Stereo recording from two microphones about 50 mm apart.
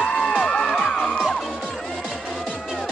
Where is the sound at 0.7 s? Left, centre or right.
Centre.